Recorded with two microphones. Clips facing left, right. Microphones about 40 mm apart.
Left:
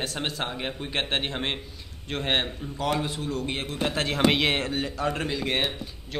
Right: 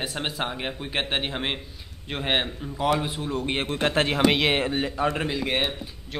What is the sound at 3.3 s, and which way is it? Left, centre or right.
Speech, right.